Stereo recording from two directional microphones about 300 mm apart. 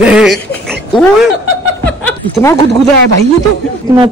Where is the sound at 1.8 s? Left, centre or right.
Centre.